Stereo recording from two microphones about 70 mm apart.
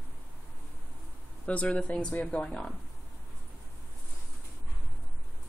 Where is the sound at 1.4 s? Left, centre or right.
Centre.